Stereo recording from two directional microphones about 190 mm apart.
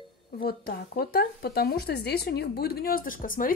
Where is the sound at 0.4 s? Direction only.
55° left (ahead or behind).